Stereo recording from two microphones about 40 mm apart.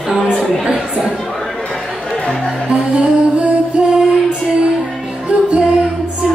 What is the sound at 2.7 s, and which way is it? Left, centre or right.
Music, right.